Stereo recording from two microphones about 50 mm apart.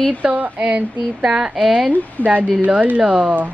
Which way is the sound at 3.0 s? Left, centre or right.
Right.